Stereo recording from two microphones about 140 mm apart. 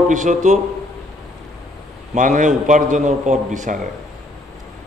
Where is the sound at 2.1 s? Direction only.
60° right (ahead or behind).